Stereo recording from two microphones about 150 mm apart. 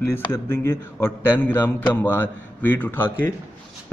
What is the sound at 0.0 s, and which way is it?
A man's voice, 15° left (ahead or behind).